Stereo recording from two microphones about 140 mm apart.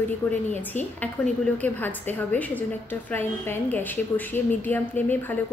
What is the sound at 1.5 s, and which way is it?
A woman's voice, 10° left (ahead or behind).